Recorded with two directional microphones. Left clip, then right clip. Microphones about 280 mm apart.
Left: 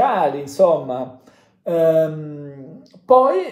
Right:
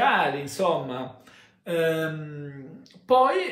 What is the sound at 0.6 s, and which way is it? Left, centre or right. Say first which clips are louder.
Speech: left 11 dB; right.